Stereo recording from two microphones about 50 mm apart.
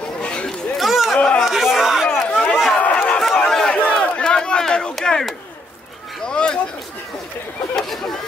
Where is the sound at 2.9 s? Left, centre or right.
Left.